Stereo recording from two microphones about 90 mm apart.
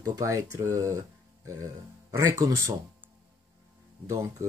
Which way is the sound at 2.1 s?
35° right (ahead or behind).